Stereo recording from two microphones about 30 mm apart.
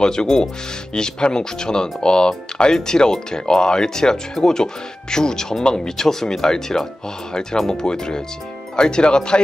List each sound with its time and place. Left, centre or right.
0.0 s speech: left